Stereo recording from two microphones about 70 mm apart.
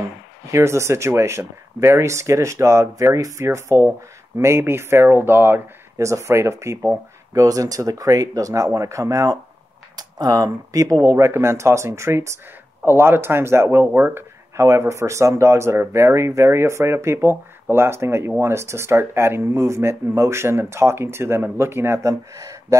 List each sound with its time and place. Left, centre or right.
0.5 s speech: right
5.9 s speech: right
7.3 s speech: right
9.9 s speech: right
11.1 s speech: right
13.9 s speech: right
14.6 s speech: right